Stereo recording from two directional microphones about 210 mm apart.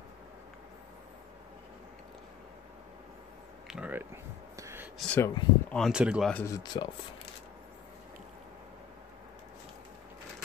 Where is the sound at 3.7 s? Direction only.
5° right (ahead or behind).